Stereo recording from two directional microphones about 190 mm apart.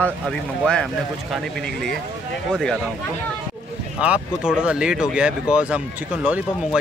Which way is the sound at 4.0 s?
5° right (ahead or behind).